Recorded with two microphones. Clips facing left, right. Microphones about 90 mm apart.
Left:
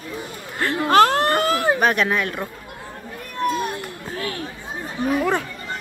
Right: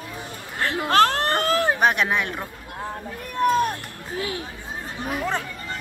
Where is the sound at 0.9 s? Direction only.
10° left (ahead or behind).